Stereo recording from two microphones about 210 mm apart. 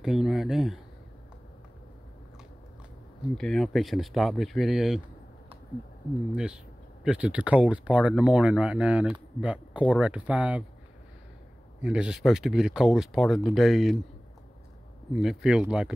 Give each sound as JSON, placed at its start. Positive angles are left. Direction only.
{"t": 0.0, "sound": "speech", "side_deg": 0}
{"t": 3.3, "sound": "speech", "side_deg": 0}
{"t": 6.3, "sound": "speech", "side_deg": -5}
{"t": 11.8, "sound": "speech", "side_deg": -5}
{"t": 15.1, "sound": "speech", "side_deg": 0}